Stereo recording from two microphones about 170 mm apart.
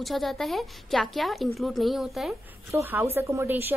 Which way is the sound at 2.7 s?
15° right (ahead or behind).